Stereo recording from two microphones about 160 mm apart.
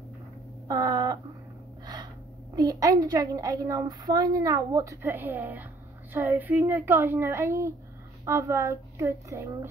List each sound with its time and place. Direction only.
0.7 s a woman's voice: 25° right (ahead or behind)
2.5 s a woman's voice: 25° right (ahead or behind)